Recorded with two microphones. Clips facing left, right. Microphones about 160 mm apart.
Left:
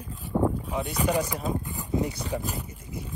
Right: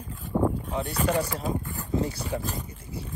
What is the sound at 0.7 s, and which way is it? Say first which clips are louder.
Speech: even; 15° left (ahead or behind).